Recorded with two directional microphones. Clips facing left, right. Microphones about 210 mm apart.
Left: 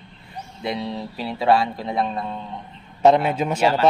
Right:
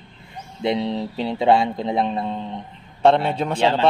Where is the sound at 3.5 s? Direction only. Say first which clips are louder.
Right 1 dB; 25° right (ahead or behind).